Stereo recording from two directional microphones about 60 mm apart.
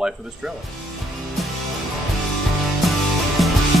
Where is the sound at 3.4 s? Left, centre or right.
Centre.